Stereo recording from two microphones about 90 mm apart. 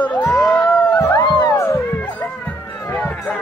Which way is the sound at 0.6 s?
20° left (ahead or behind).